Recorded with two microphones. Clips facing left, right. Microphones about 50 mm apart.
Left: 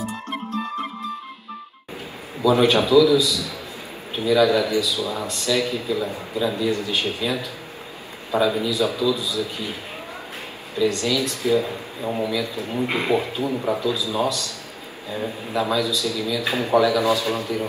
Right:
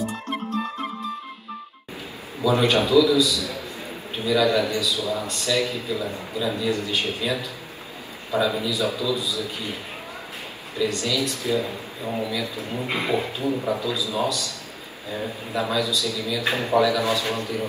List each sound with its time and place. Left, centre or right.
2.4 s a man's voice: left
10.8 s a man's voice: left
15.5 s a man's voice: left